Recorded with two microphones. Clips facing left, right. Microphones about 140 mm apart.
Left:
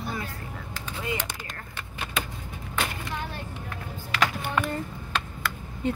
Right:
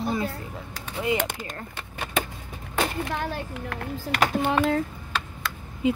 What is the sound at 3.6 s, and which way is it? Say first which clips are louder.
Speech: right 7 dB; 65° right (ahead or behind).